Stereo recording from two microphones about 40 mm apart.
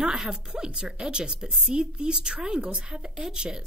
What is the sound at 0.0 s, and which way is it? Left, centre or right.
A woman's voice, centre.